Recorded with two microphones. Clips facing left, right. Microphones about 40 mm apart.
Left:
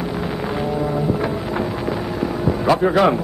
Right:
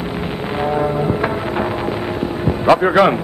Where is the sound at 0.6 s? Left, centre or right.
Right.